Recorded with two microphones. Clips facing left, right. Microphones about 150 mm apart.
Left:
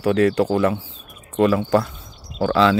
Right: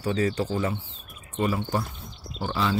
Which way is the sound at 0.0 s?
70° left (ahead or behind).